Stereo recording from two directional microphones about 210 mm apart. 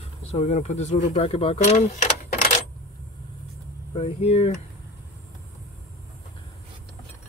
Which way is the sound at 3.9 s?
30° left (ahead or behind).